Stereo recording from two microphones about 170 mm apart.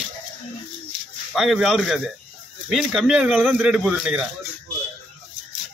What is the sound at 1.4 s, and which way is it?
Speech, 5° right (ahead or behind).